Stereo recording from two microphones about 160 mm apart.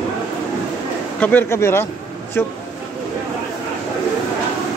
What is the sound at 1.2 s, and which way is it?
Speech, 10° left (ahead or behind).